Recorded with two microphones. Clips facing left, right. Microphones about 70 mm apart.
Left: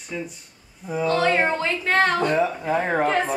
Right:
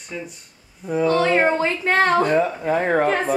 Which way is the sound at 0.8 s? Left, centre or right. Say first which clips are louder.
Right 3 dB; centre.